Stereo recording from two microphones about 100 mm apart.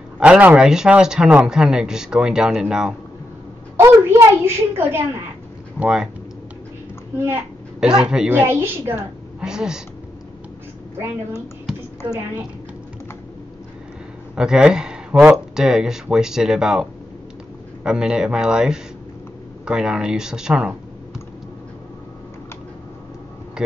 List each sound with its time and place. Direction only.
0.2 s speech: 10° right (ahead or behind)
3.7 s a woman's voice: 25° right (ahead or behind)
5.8 s speech: 5° right (ahead or behind)
7.8 s speech: 5° right (ahead or behind)
8.3 s a woman's voice: 20° right (ahead or behind)
9.4 s speech: 5° right (ahead or behind)
14.3 s speech: 5° right (ahead or behind)
17.8 s speech: 10° right (ahead or behind)